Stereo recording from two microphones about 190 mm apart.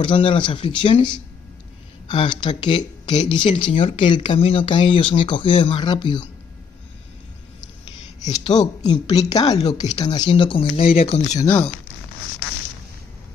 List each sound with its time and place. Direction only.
0.0 s speech: 25° left (ahead or behind)
8.5 s speech: 20° left (ahead or behind)
11.4 s speech: 10° left (ahead or behind)